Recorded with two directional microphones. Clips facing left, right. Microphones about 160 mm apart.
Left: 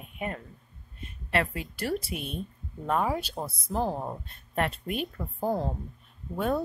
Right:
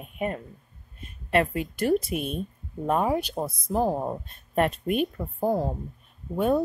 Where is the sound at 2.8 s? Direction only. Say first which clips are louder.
Right 3 dB; 20° right (ahead or behind).